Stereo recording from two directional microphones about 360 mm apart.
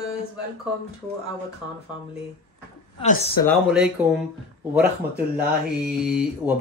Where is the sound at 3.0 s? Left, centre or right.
Left.